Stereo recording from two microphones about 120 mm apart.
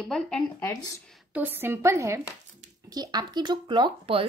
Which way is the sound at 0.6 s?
30° left (ahead or behind).